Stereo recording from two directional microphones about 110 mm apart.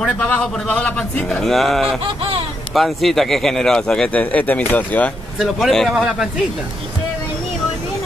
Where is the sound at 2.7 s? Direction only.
Centre (ahead or behind).